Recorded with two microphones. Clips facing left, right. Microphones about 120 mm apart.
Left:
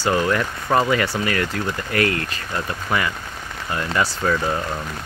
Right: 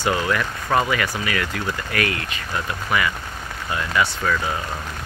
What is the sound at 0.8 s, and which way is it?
Speech, 30° left (ahead or behind).